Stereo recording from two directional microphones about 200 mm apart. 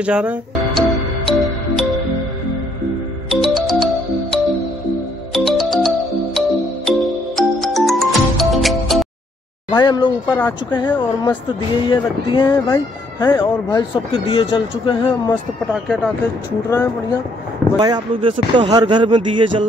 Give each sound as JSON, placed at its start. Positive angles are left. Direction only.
{"t": 0.0, "sound": "music", "side_deg": -5}
{"t": 3.3, "sound": "music", "side_deg": 0}
{"t": 9.7, "sound": "speech", "side_deg": 20}
{"t": 15.7, "sound": "speech", "side_deg": 5}
{"t": 16.7, "sound": "speech", "side_deg": 15}
{"t": 17.7, "sound": "speech", "side_deg": -20}